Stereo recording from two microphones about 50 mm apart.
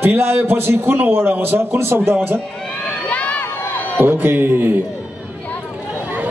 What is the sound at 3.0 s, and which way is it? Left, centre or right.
Crowd, left.